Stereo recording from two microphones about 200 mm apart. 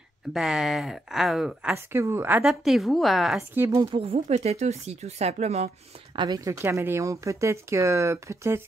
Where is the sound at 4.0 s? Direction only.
30° right (ahead or behind).